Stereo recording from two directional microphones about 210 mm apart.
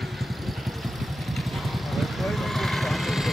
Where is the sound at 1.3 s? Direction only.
Centre (ahead or behind).